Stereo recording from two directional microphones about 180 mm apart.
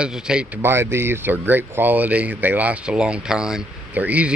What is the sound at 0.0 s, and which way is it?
Speech, 5° right (ahead or behind).